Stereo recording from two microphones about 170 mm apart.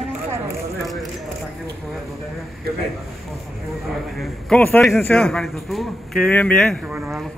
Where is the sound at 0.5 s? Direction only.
Centre (ahead or behind).